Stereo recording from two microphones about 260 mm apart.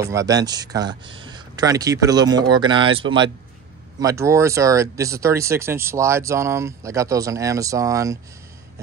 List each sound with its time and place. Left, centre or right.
0.0 s speech: centre